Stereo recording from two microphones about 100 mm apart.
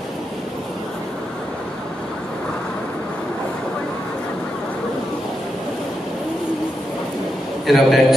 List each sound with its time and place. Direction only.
7.6 s a man's voice: centre (ahead or behind)